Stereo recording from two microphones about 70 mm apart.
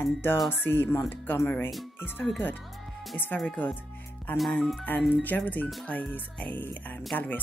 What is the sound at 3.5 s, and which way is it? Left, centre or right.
Speech, left.